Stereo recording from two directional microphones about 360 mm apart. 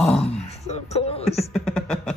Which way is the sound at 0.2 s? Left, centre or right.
Centre.